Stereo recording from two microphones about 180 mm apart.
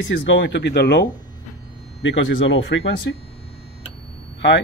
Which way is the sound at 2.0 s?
90° left.